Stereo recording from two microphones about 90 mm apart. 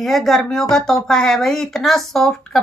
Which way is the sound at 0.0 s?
5° left (ahead or behind).